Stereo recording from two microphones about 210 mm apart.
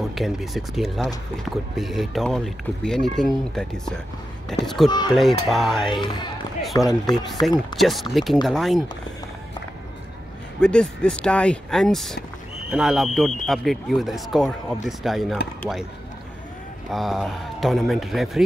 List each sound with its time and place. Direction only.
0.1 s speech: centre (ahead or behind)
4.8 s speech: 20° left (ahead or behind)
5.1 s speech: centre (ahead or behind)
6.8 s speech: 20° left (ahead or behind)
7.7 s speech: centre (ahead or behind)
10.6 s speech: 5° left (ahead or behind)
16.9 s speech: centre (ahead or behind)